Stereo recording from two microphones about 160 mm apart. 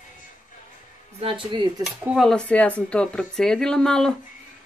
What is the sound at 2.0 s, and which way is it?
Speech, 5° right (ahead or behind).